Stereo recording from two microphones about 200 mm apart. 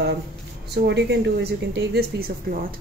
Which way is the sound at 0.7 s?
60° right (ahead or behind).